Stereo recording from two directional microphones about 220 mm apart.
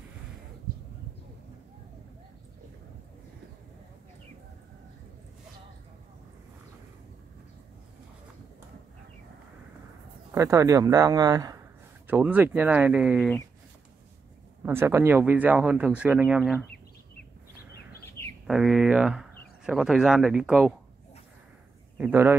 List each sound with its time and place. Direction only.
10.3 s speech: 15° right (ahead or behind)
14.6 s speech: 10° right (ahead or behind)
18.2 s bird: 10° left (ahead or behind)
18.5 s speech: centre (ahead or behind)
21.9 s a man's voice: 10° right (ahead or behind)